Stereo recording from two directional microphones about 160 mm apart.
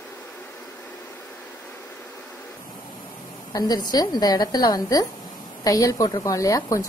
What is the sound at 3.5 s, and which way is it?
A woman's voice, 25° left (ahead or behind).